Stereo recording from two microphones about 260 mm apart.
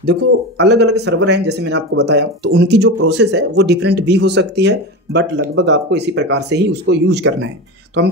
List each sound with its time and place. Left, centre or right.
0.0 s speech: right